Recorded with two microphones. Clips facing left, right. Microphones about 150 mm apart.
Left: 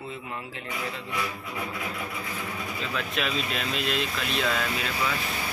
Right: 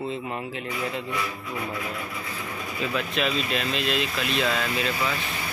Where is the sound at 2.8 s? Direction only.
Centre (ahead or behind).